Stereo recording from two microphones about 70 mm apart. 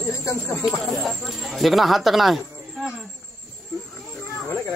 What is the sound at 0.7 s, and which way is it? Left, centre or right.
Speech, centre.